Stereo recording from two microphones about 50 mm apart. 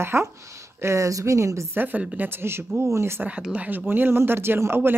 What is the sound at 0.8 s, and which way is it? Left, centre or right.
Speech, right.